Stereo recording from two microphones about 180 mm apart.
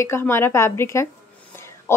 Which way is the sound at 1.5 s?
15° left (ahead or behind).